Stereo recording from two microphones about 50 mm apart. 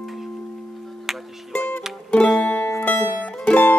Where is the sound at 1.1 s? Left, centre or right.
Centre.